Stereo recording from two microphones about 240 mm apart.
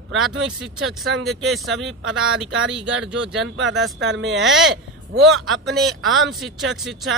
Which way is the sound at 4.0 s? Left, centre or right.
Right.